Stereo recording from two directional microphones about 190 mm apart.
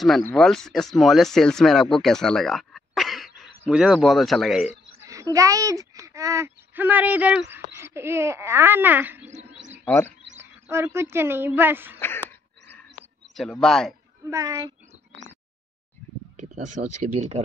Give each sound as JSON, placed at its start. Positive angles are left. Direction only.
{"t": 0.3, "sound": "speech", "side_deg": 5}
{"t": 5.0, "sound": "speech", "side_deg": -15}
{"t": 10.7, "sound": "speech", "side_deg": -15}
{"t": 12.0, "sound": "a sound", "side_deg": 10}
{"t": 13.3, "sound": "speech", "side_deg": 0}
{"t": 14.3, "sound": "speech", "side_deg": -15}
{"t": 16.3, "sound": "speech", "side_deg": -40}